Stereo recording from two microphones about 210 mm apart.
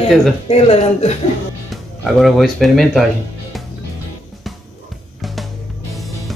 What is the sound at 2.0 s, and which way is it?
A man's voice, centre (ahead or behind).